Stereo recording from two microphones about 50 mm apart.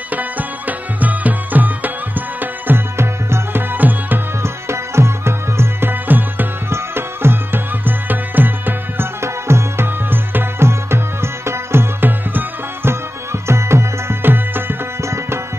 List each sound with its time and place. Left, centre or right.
0.1 s music: right
3.0 s tabla: right
3.7 s tabla: right
4.4 s music: right
5.9 s music: right
6.7 s music: right
9.2 s music: right
10.7 s music: right
12.1 s music: right
13.3 s music: right
14.2 s music: right
15.0 s tabla: right